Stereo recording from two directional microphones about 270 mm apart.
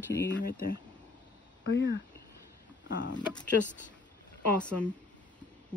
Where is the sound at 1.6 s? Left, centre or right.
Left.